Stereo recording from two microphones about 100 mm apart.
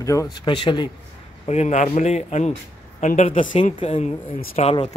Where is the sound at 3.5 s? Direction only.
70° left (ahead or behind).